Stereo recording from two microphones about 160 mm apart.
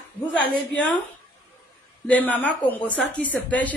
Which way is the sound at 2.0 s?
10° left (ahead or behind).